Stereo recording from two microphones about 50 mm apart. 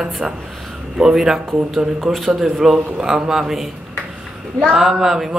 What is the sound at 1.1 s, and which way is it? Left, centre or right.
Speech, centre.